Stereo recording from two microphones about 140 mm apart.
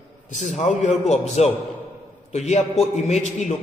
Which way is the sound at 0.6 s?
60° left (ahead or behind).